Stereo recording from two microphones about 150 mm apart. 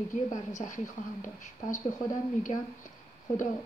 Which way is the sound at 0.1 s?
55° left (ahead or behind).